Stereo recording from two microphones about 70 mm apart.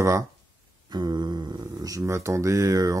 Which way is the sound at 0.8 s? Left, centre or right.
Right.